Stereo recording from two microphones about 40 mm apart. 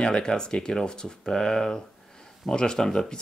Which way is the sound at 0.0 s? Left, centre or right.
Centre.